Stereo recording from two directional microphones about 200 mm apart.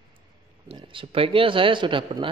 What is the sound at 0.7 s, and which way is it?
A man's voice, 25° right (ahead or behind).